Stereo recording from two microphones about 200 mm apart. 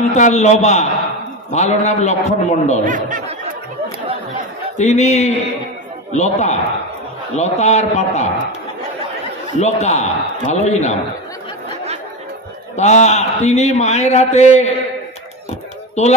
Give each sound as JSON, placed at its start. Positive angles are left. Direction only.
{"t": 0.1, "sound": "a man's voice", "side_deg": 35}
{"t": 2.8, "sound": "speech", "side_deg": -40}
{"t": 4.7, "sound": "a man's voice", "side_deg": 35}
{"t": 9.6, "sound": "a man's voice", "side_deg": 35}
{"t": 12.7, "sound": "a man's voice", "side_deg": 35}
{"t": 16.0, "sound": "a man's voice", "side_deg": 35}